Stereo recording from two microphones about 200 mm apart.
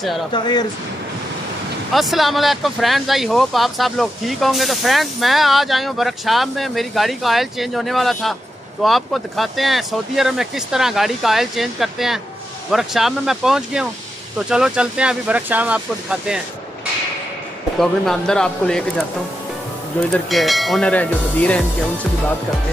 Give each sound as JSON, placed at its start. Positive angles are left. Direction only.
{"t": 0.3, "sound": "speech", "side_deg": 20}
{"t": 2.0, "sound": "speech", "side_deg": 0}
{"t": 17.7, "sound": "speech", "side_deg": 0}